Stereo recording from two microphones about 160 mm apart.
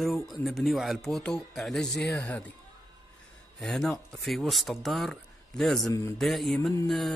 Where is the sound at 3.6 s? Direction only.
Centre (ahead or behind).